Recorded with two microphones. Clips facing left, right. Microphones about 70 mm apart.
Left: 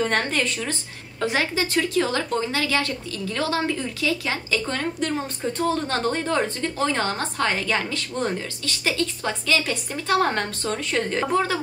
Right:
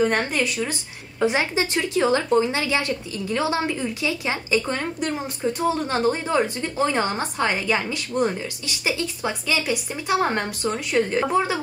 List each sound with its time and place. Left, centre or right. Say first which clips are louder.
0.0 s a woman's voice: right 2 dB; centre